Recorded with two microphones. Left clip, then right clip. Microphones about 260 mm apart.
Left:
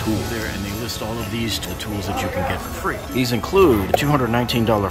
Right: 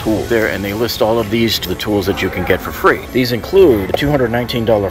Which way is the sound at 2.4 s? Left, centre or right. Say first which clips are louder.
Right 11 dB; centre.